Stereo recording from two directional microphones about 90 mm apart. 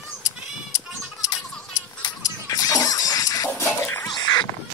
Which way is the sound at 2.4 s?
45° left (ahead or behind).